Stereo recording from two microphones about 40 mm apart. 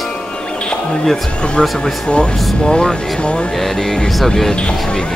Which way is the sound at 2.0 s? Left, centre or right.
Left.